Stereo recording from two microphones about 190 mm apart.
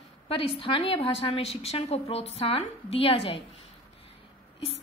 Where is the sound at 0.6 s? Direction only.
30° left (ahead or behind).